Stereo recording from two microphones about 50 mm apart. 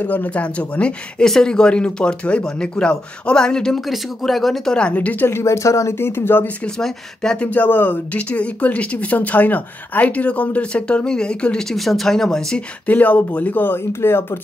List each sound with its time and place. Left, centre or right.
0.0 s speech: left
1.2 s a man's voice: centre
3.8 s speech: centre
5.4 s speech: left
5.9 s speech: left
7.4 s speech: left
8.1 s speech: left
11.7 s a man's voice: centre
12.8 s speech: left